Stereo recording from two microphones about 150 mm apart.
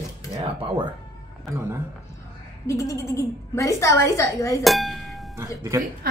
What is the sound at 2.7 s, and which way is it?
A woman's voice, 20° left (ahead or behind).